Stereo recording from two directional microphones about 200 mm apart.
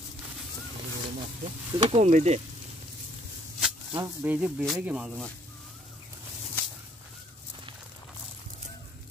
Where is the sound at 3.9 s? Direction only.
10° right (ahead or behind).